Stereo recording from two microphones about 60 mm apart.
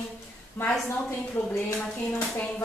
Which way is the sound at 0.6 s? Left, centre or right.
Left.